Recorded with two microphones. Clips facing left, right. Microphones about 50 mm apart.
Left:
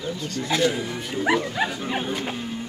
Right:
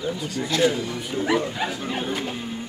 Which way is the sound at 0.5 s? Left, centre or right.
Centre.